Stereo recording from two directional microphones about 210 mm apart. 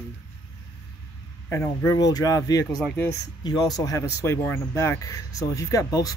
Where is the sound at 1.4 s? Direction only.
15° left (ahead or behind).